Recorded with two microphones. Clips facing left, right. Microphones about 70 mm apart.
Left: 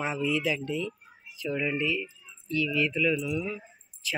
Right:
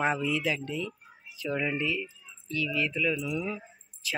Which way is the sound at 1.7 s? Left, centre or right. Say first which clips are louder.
Left 1 dB; right.